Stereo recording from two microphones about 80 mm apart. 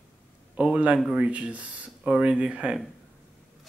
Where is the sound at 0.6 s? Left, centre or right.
Centre.